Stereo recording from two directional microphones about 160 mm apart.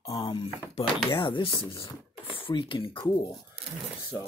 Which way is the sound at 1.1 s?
30° left (ahead or behind).